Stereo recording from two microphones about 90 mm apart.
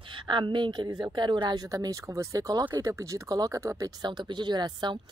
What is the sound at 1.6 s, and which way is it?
Speech, 40° right (ahead or behind).